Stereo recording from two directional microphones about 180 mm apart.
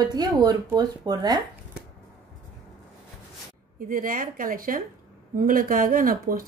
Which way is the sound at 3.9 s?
50° right (ahead or behind).